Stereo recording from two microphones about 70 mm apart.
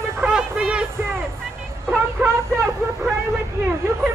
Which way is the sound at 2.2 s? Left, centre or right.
Right.